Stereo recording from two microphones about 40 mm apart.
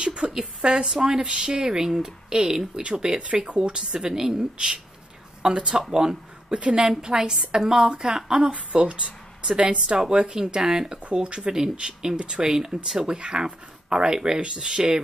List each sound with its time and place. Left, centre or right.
0.0 s a sound: right
0.4 s a woman's voice: right
2.8 s a woman's voice: right
8.7 s speech: right